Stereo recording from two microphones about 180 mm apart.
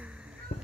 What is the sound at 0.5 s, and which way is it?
Clip-clop, 35° left (ahead or behind).